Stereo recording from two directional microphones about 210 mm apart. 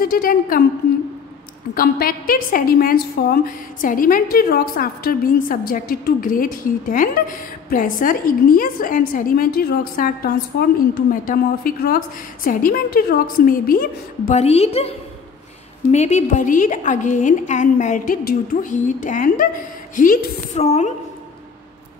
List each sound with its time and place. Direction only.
0.0 s a woman's voice: 45° left (ahead or behind)
1.8 s a woman's voice: 45° left (ahead or behind)
14.4 s a woman's voice: 30° left (ahead or behind)